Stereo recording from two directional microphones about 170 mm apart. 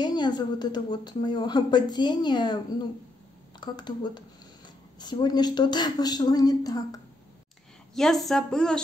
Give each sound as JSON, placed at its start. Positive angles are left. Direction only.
{"t": 0.0, "sound": "a woman's voice", "side_deg": 25}
{"t": 7.9, "sound": "speech", "side_deg": 0}